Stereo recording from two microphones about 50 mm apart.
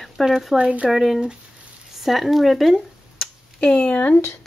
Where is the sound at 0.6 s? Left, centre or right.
Right.